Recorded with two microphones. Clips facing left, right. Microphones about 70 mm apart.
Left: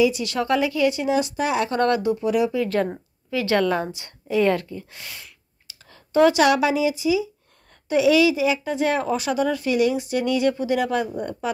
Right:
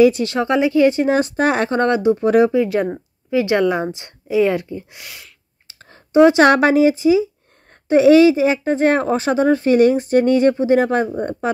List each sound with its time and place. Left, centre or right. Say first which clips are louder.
0.0 s speech: right 7 dB; right
0.3 s speech: right 5 dB; right
1.7 s speech: right 5 dB; right
2.1 s speech: right 7 dB; right
2.7 s a woman's voice: right 3 dB; centre
4.6 s speech: right 5 dB; right
5.7 s a sound: right 4 dB; right
6.1 s speech: right 6 dB; right
6.4 s speech: right 6 dB; right